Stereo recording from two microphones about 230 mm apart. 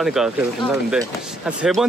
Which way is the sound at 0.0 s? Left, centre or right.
Centre.